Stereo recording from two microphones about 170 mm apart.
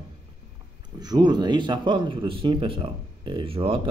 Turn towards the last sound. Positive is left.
turn(degrees=-30)  # may be behind; listen again after turning